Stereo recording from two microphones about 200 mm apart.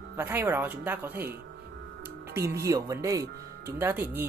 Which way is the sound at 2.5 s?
15° right (ahead or behind).